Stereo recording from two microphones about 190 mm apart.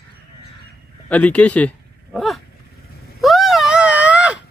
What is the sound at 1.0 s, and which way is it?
Speech, 5° left (ahead or behind).